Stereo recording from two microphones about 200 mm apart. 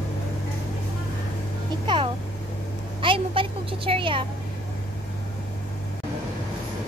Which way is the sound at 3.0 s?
25° right (ahead or behind).